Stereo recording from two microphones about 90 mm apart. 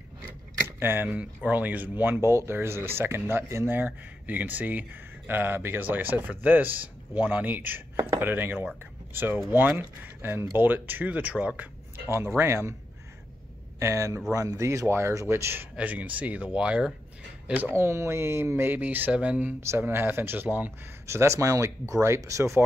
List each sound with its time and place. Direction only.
0.7 s speech: 25° right (ahead or behind)
12.4 s speech: 25° right (ahead or behind)
13.7 s speech: 30° right (ahead or behind)
15.7 s speech: 15° right (ahead or behind)
21.1 s speech: 30° right (ahead or behind)